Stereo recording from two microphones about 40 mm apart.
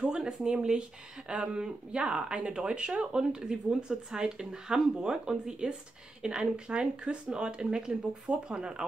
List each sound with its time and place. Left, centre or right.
0.0 s speech: centre